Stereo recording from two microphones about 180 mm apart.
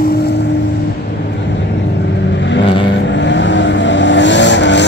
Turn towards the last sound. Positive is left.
turn(degrees=80)